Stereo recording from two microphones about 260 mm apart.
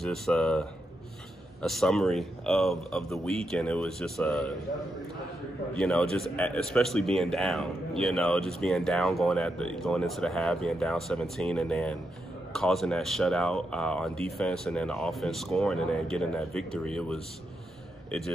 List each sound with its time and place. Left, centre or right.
0.0 s a man's voice: centre
5.8 s a man's voice: centre